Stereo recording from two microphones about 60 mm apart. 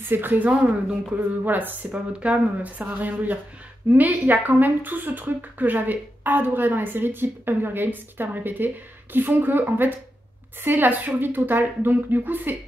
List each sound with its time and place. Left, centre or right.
0.0 s speech: right